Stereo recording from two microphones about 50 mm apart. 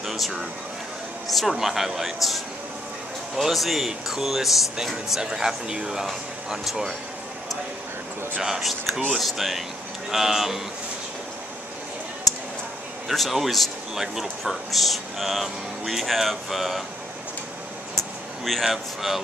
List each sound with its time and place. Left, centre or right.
0.0 s speech: centre
8.4 s speech: centre
13.1 s speech: centre
17.9 s a sound: centre
18.6 s speech: centre